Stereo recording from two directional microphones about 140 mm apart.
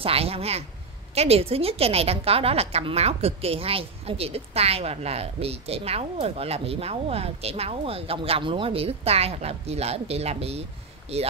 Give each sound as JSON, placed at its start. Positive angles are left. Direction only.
{"t": 0.0, "sound": "a woman's voice", "side_deg": -45}